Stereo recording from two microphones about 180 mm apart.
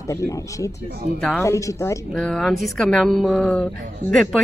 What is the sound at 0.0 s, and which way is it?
Speech, 15° left (ahead or behind).